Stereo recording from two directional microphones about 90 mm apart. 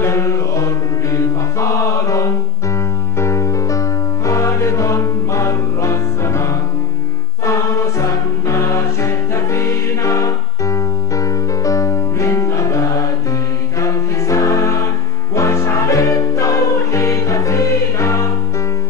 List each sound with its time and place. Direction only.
0.0 s music: 35° left (ahead or behind)
8.0 s music: 35° left (ahead or behind)